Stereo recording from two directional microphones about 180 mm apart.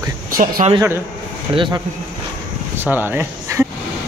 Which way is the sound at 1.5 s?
25° right (ahead or behind).